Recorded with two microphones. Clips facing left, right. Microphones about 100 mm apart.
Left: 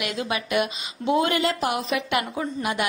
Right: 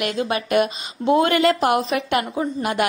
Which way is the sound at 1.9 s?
40° right (ahead or behind).